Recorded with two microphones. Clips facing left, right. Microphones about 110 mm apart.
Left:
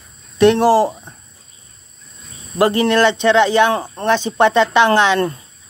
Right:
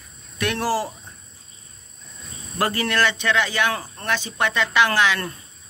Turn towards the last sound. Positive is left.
turn(degrees=30)  # may be behind; listen again after turning